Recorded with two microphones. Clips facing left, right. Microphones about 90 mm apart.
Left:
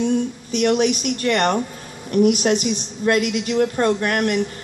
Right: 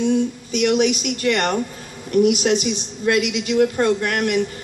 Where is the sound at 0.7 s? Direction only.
45° left (ahead or behind).